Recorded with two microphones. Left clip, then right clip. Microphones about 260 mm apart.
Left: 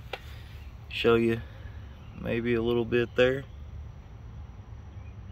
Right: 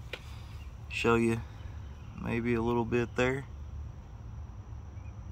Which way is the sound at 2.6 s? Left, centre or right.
Right.